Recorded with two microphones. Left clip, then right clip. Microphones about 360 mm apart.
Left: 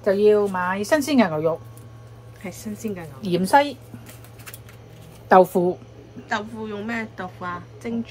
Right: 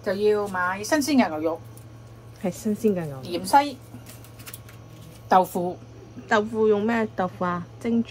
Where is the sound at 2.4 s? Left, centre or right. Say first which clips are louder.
Right 8 dB; centre.